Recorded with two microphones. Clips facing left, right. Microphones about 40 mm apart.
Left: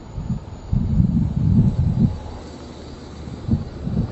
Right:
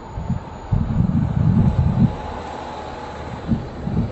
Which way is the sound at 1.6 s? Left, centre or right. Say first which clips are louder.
Even; right.